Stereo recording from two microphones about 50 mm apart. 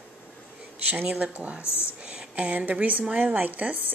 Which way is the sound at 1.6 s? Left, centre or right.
Left.